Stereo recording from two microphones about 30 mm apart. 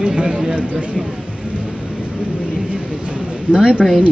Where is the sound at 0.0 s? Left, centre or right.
Right.